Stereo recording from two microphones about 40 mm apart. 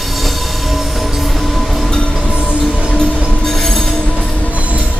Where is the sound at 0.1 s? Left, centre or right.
Centre.